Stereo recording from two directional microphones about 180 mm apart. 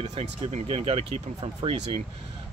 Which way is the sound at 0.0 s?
35° right (ahead or behind).